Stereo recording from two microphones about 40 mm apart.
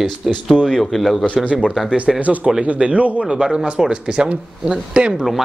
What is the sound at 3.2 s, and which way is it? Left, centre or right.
Speech, centre.